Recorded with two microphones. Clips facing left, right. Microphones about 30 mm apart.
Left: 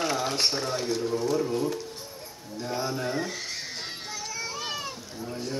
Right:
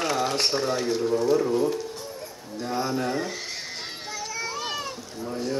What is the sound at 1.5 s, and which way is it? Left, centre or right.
Speech, centre.